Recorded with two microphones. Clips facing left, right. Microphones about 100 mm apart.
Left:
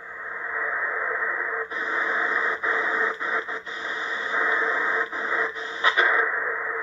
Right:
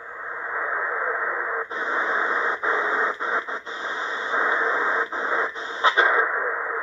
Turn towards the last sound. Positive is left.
turn(degrees=-25)  # may be behind; listen again after turning